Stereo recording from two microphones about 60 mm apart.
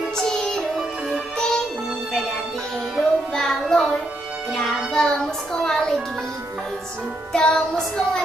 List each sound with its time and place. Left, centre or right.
0.2 s music: centre
3.0 s music: centre
4.9 s a sound: centre
7.3 s child singing: centre